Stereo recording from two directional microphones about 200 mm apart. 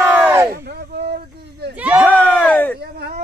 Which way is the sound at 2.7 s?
55° right (ahead or behind).